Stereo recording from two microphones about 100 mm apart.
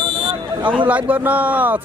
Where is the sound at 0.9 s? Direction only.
15° right (ahead or behind).